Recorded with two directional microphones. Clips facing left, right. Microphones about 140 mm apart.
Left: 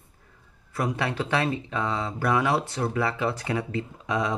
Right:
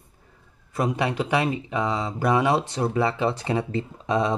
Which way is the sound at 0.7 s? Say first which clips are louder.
Right 3 dB; 20° right (ahead or behind).